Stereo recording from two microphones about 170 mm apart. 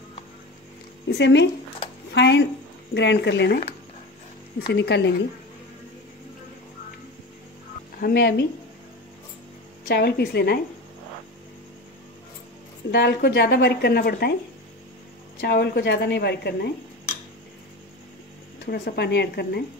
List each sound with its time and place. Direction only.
1.0 s speech: 90° left
4.6 s speech: 80° left
8.0 s speech: 70° left (ahead or behind)
9.8 s speech: 70° left (ahead or behind)
12.9 s speech: 75° left (ahead or behind)
15.4 s speech: 70° left (ahead or behind)
18.7 s speech: 70° left (ahead or behind)